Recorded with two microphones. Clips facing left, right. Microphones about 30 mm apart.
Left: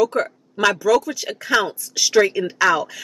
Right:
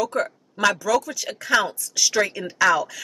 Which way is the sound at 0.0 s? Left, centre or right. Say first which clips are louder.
Left 5 dB; centre.